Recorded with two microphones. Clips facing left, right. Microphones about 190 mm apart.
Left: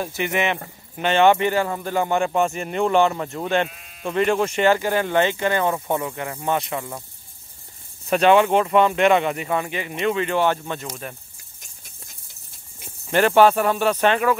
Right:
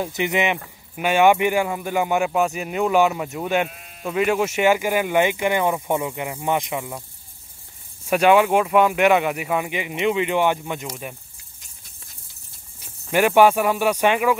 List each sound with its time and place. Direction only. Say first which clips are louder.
0.0 s speech: right 1 dB; 20° right (ahead or behind)
8.1 s speech: even; 10° right (ahead or behind)
13.1 s speech: even; 10° right (ahead or behind)